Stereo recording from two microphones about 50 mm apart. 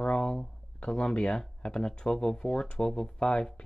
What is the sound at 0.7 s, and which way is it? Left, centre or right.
Speech, centre.